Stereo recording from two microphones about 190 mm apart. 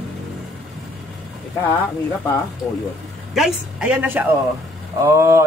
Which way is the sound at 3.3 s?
5° right (ahead or behind).